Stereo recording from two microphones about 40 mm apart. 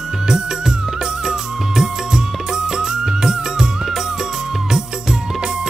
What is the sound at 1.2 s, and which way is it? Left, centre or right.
Music, centre.